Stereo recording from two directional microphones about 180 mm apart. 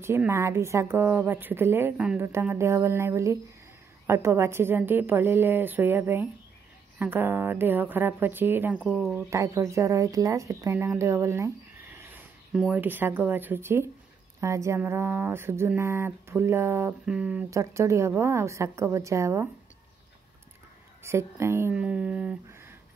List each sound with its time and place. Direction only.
0.0 s speech: 15° right (ahead or behind)
8.7 s speech: centre (ahead or behind)
9.3 s speech: 15° right (ahead or behind)
21.0 s speech: 15° right (ahead or behind)